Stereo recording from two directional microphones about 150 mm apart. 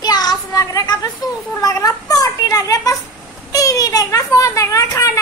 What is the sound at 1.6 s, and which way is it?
A child's voice, 25° left (ahead or behind).